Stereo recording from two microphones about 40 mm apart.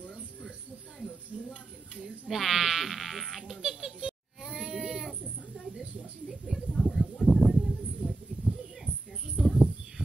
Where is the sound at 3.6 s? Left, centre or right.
Centre.